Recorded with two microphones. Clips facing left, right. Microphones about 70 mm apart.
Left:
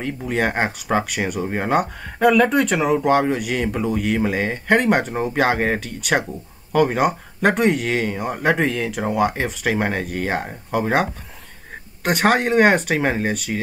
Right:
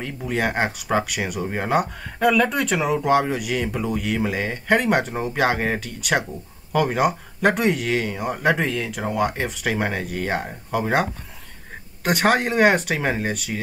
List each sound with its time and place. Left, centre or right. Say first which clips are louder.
0.0 s speech: left 2 dB; centre